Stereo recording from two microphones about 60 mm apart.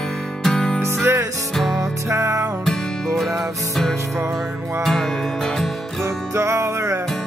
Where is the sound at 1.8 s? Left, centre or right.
Right.